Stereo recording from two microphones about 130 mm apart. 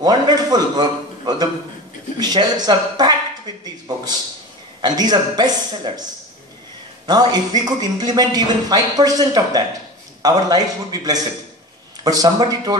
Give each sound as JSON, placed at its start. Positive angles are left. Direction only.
{"t": 0.0, "sound": "a man's voice", "side_deg": -30}
{"t": 3.6, "sound": "a sound", "side_deg": -30}
{"t": 4.8, "sound": "a man's voice", "side_deg": -30}
{"t": 7.1, "sound": "a man's voice", "side_deg": -30}